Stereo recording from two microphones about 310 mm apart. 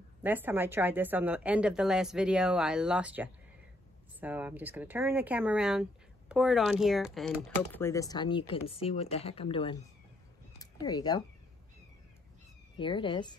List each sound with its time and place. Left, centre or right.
0.2 s speech: centre
12.7 s speech: centre